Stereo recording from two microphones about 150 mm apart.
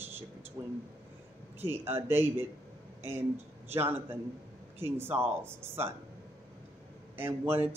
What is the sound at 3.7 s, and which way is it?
Speech, 15° right (ahead or behind).